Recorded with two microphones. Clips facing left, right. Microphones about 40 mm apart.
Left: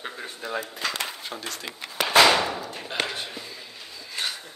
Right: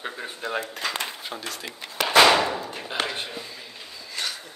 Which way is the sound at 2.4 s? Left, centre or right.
Right.